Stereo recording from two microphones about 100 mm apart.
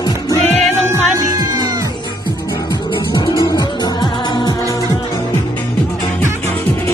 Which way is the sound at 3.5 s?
45° left (ahead or behind).